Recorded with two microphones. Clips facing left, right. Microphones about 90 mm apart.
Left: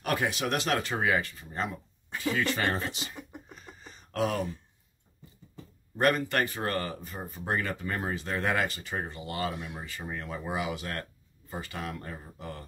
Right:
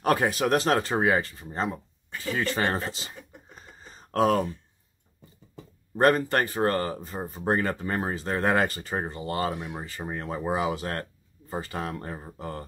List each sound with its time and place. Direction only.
0.0 s speech: 35° right (ahead or behind)
3.5 s a sound: 35° right (ahead or behind)
5.9 s speech: 35° right (ahead or behind)